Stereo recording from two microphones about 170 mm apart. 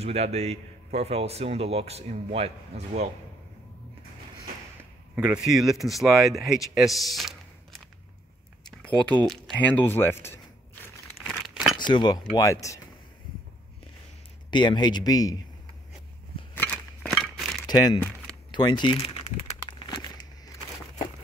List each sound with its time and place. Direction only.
0.0 s a man's voice: 40° right (ahead or behind)
5.1 s speech: 5° right (ahead or behind)
8.6 s typing: 5° left (ahead or behind)
9.3 s speech: 5° left (ahead or behind)
11.1 s a sound: centre (ahead or behind)
11.8 s speech: 25° left (ahead or behind)
14.5 s speech: 25° left (ahead or behind)
16.5 s a sound: 10° left (ahead or behind)
17.6 s speech: 20° left (ahead or behind)